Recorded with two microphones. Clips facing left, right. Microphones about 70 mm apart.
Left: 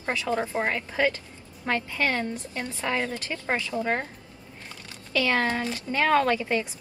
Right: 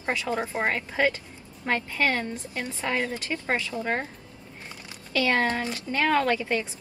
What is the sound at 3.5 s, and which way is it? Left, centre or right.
Speech, left.